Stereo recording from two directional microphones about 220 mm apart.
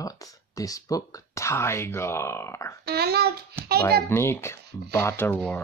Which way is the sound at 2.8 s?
45° right (ahead or behind).